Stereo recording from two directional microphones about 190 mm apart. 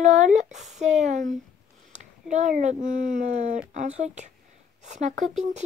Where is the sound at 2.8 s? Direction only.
40° right (ahead or behind).